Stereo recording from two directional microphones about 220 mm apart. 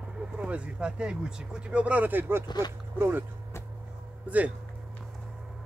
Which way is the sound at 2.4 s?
20° left (ahead or behind).